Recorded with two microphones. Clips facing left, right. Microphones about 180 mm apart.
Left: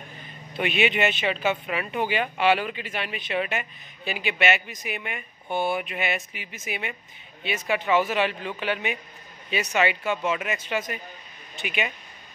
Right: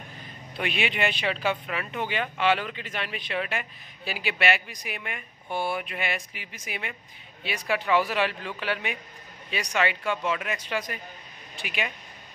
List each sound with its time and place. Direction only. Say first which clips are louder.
0.6 s speech: left 5 dB; centre (ahead or behind)
5.5 s speech: left 3 dB; 25° left (ahead or behind)
5.8 s speech: left 3 dB; 5° left (ahead or behind)